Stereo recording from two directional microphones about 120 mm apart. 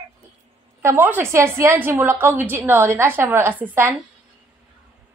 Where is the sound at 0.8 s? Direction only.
15° right (ahead or behind).